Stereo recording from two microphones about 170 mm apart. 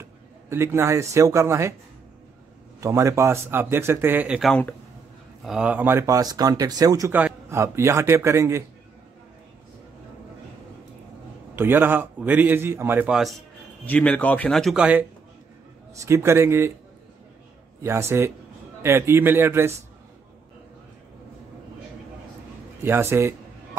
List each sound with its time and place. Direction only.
0.0 s a man's voice: 15° right (ahead or behind)
2.8 s a man's voice: 20° right (ahead or behind)
11.5 s a man's voice: 10° right (ahead or behind)
13.8 s speech: 10° left (ahead or behind)
15.9 s a man's voice: 15° right (ahead or behind)
17.8 s a man's voice: 15° right (ahead or behind)
22.8 s a sound: 15° right (ahead or behind)